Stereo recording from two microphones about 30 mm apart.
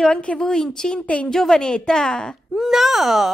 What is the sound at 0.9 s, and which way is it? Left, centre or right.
Speech, left.